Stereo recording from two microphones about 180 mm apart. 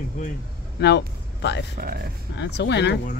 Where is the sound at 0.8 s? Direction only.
70° left (ahead or behind).